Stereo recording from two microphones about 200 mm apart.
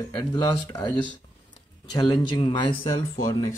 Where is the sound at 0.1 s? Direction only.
20° left (ahead or behind).